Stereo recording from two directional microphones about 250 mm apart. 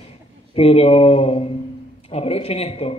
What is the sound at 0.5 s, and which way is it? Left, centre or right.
A man's voice, left.